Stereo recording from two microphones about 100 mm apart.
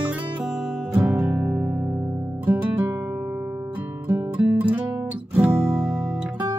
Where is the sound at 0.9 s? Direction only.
25° right (ahead or behind).